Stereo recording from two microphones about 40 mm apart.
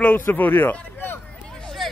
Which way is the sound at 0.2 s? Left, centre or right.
Left.